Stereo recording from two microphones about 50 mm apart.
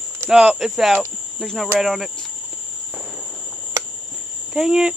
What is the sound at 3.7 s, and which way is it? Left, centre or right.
Cricket, right.